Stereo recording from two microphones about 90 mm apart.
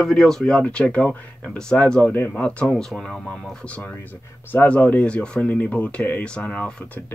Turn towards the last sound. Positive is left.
turn(degrees=15)  # may be behind; listen again after turning